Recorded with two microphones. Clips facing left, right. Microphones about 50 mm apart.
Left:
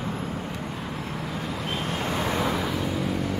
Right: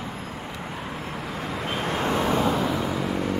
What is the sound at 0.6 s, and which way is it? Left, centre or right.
Vehicle, centre.